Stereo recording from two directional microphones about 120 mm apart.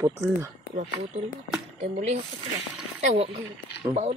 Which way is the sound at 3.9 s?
75° right (ahead or behind).